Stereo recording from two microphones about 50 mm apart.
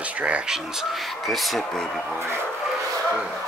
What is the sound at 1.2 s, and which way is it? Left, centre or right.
Speech, centre.